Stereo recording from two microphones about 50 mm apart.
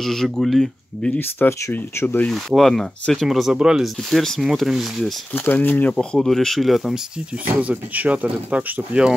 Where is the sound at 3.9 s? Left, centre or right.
Centre.